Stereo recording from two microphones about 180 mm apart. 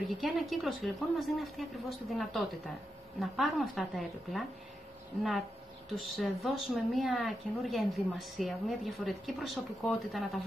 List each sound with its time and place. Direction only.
0.2 s speech: centre (ahead or behind)
5.9 s speech: centre (ahead or behind)